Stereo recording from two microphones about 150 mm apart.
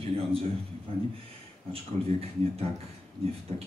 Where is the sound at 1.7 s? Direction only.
40° right (ahead or behind).